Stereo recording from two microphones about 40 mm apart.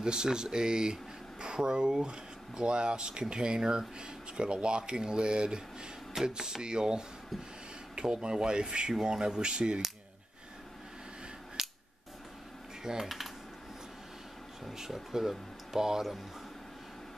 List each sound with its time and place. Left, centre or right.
0.0 s speech: centre
11.6 s scissors: centre
12.8 s speech: centre
14.6 s speech: centre